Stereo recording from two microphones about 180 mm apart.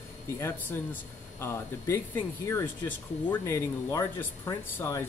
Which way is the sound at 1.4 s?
15° left (ahead or behind).